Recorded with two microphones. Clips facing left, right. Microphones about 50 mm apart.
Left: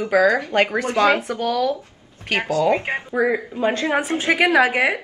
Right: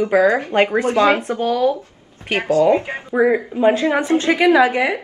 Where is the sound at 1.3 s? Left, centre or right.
Right.